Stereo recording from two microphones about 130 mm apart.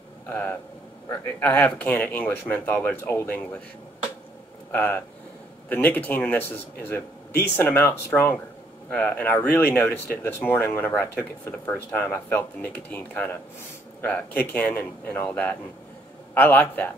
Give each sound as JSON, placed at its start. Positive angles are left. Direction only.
{"t": 0.3, "sound": "speech", "side_deg": 15}
{"t": 4.7, "sound": "speech", "side_deg": 15}
{"t": 8.9, "sound": "speech", "side_deg": 15}